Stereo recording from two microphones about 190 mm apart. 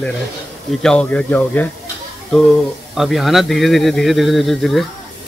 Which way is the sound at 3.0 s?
Centre (ahead or behind).